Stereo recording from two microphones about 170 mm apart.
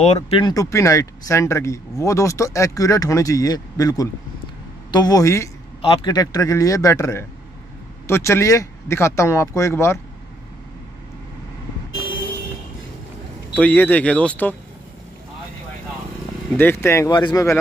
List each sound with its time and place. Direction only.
0.0 s speech: 40° left (ahead or behind)
0.4 s speech: 20° left (ahead or behind)
13.6 s speech: 10° left (ahead or behind)
16.5 s speech: 15° left (ahead or behind)